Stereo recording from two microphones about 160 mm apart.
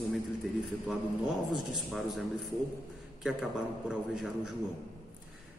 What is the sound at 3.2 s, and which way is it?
A man's voice, 5° right (ahead or behind).